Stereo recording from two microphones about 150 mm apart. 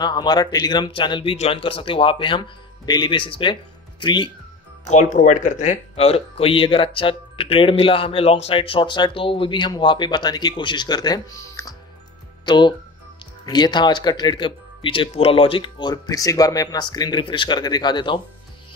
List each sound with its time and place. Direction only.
0.0 s speech: 30° left (ahead or behind)
4.8 s speech: 55° left (ahead or behind); by 18.2 s 30° left (ahead or behind)